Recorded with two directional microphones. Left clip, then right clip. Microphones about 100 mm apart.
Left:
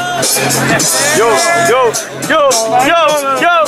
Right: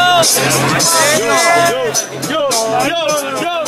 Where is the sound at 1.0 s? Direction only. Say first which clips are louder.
Left 3 dB; 5° right (ahead or behind).